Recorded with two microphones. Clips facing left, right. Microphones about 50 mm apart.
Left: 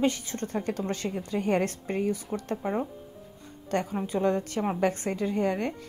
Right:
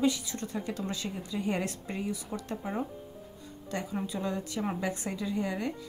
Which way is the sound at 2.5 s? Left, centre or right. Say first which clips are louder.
Left 5 dB; centre.